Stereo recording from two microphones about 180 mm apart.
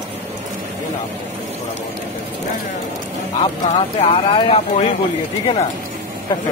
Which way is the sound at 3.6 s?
30° left (ahead or behind).